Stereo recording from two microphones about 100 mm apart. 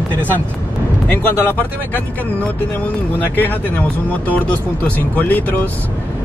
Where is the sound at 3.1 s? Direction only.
20° left (ahead or behind).